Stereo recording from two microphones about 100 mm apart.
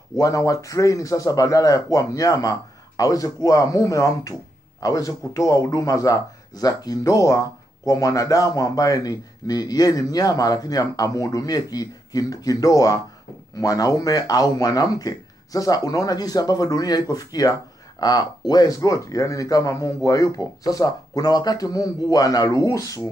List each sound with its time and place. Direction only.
0.1 s speech: 35° left (ahead or behind)